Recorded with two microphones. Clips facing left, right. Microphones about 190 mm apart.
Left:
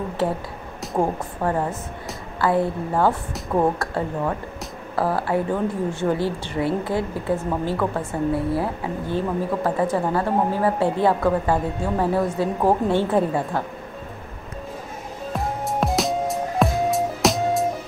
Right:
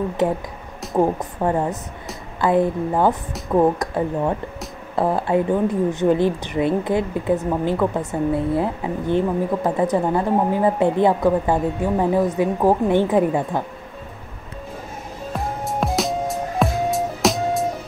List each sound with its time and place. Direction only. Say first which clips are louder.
0.9 s a woman's voice: right 4 dB; 10° right (ahead or behind)
15.3 s music: even; centre (ahead or behind)